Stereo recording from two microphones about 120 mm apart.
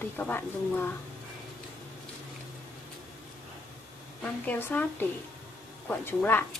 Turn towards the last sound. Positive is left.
turn(degrees=15)  # may be behind; listen again after turning